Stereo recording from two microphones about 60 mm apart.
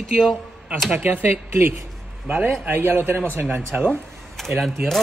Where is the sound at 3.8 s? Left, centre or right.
Centre.